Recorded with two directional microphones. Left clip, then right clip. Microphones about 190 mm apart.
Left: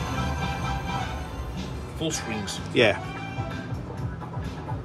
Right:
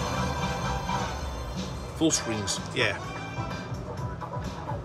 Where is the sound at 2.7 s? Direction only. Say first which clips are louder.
Left 7 dB; centre (ahead or behind).